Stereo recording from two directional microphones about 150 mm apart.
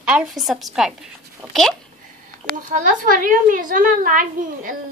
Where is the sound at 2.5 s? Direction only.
60° right (ahead or behind).